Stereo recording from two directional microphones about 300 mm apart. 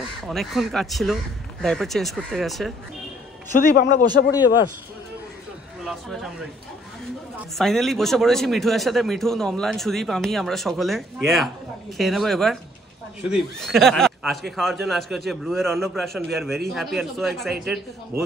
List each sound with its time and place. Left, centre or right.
0.2 s speech: centre
3.5 s a man's voice: left
4.3 s a man's voice: centre
7.5 s speech: centre